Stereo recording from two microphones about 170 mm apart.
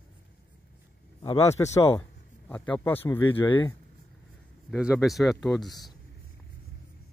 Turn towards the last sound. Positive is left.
turn(degrees=0)  # may be behind; listen again after turning